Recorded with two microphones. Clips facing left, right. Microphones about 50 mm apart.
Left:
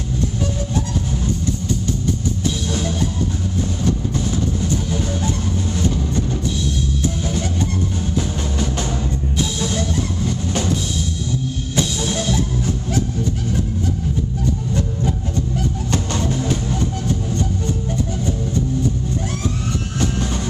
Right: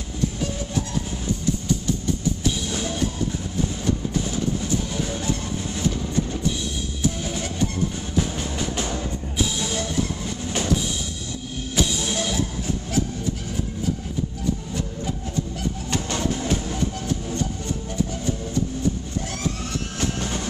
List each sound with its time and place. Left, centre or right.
10.2 s drum kit: centre
11.7 s music: centre